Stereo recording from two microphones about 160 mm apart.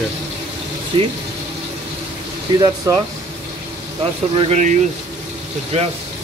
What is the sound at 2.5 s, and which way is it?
Speech, 25° right (ahead or behind).